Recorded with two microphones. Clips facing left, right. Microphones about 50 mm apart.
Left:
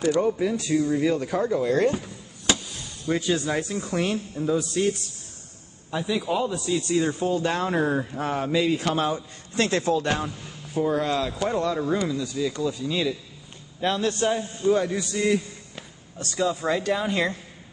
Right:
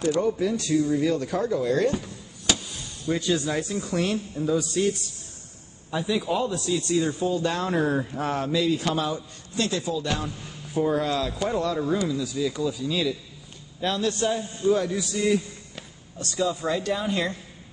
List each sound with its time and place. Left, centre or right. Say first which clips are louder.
0.1 s speech: even; left
1.9 s a sound: left 1 dB; left
3.1 s a man's voice: left 1 dB; left; by 6.7 s centre
7.0 s speech: left 1 dB; left
7.2 s a man's voice: left 1 dB; left
7.5 s a man's voice: left 1 dB; centre
8.5 s a man's voice: left 2 dB; left
10.7 s a man's voice: even; centre; by 14.7 s left
15.0 s speech: even; centre
16.2 s speech: left 1 dB; left